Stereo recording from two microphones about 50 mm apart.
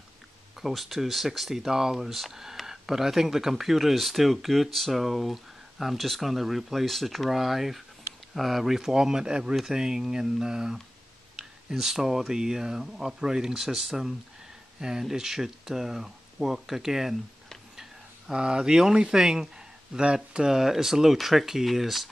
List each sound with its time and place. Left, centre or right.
0.6 s speech: centre
18.3 s speech: centre
20.5 s speech: centre